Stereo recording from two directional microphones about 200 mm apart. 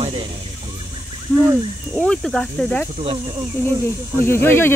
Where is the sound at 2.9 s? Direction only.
30° right (ahead or behind).